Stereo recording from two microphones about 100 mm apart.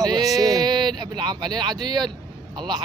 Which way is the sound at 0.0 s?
40° right (ahead or behind).